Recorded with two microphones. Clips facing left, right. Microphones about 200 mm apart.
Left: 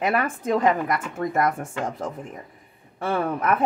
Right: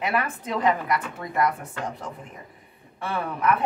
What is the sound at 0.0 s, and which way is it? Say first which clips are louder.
Speech: left 3 dB; 45° left (ahead or behind).